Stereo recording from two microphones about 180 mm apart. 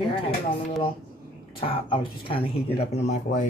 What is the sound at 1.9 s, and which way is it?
Speech, 30° left (ahead or behind).